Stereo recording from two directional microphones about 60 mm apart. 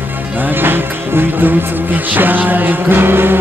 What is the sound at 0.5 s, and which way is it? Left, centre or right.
Speech, right.